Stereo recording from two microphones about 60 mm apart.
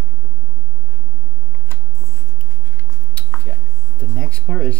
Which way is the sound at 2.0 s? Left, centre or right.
Left.